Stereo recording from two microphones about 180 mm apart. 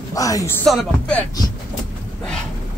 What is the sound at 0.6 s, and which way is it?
Speech, 5° left (ahead or behind).